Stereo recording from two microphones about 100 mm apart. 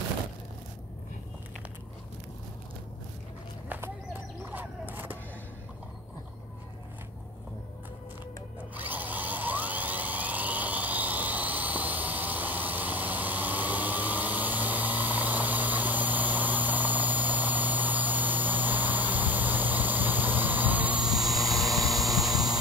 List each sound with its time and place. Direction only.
3.6 s a sound: 20° right (ahead or behind)
8.7 s drill: 15° right (ahead or behind)
21.1 s vehicle: centre (ahead or behind)